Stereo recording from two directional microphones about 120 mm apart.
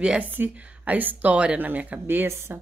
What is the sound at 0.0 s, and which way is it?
Speech, 10° right (ahead or behind).